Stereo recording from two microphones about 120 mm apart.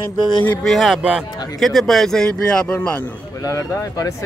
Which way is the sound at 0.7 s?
Centre (ahead or behind).